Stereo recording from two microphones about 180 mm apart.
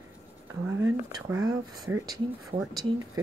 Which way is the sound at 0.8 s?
15° right (ahead or behind).